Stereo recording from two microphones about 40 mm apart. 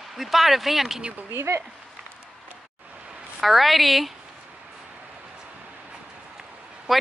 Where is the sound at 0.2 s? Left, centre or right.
Centre.